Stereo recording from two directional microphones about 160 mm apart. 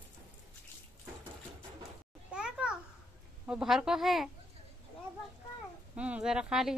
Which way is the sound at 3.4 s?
5° right (ahead or behind).